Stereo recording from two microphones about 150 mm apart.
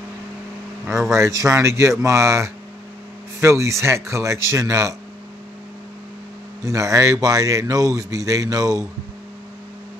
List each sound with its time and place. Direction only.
1.1 s speech: 20° right (ahead or behind)
6.6 s speech: 20° right (ahead or behind)